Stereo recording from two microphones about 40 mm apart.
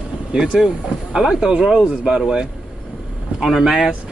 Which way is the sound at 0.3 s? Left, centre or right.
Right.